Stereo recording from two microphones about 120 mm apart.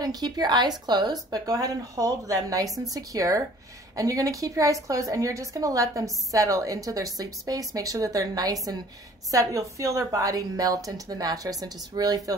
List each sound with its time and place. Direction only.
0.0 s a woman's voice: 35° right (ahead or behind)